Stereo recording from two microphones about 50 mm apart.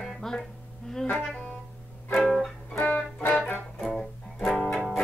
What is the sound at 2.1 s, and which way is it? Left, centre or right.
Music, centre.